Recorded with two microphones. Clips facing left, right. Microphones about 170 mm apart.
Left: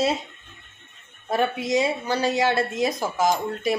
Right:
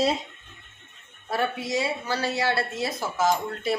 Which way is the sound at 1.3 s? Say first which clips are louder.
Left 4 dB; 20° left (ahead or behind).